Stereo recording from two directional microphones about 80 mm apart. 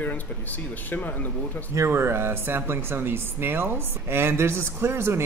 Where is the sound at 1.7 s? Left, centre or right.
Right.